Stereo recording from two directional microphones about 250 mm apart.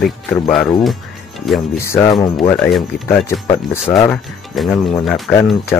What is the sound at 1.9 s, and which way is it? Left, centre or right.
Speech, centre.